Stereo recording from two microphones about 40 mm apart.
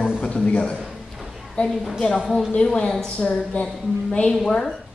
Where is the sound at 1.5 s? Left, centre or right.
Centre.